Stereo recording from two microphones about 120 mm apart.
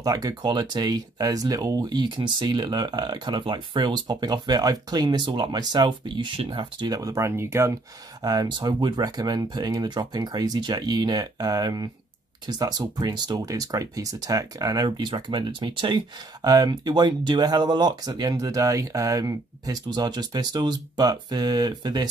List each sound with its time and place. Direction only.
0.0 s speech: 35° right (ahead or behind)
8.2 s speech: 35° right (ahead or behind)